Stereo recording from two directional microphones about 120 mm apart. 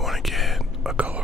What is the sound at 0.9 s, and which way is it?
Whispering, 10° right (ahead or behind).